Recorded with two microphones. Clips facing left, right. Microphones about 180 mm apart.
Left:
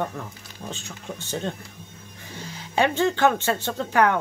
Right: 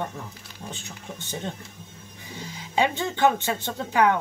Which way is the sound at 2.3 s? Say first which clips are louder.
Even; 15° right (ahead or behind).